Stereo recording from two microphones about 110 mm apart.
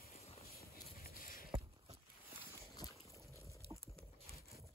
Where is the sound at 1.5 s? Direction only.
55° right (ahead or behind).